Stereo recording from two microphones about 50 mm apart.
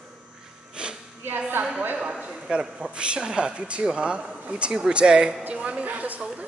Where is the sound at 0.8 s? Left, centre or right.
Centre.